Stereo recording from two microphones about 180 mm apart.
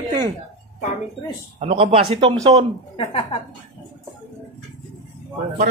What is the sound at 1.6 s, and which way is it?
Speech, 30° right (ahead or behind).